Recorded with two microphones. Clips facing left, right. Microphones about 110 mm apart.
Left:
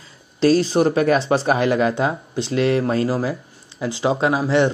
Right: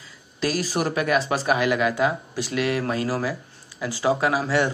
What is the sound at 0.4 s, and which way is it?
Speech, 30° left (ahead or behind).